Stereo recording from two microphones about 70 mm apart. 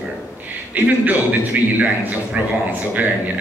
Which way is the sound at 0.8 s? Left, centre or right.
Right.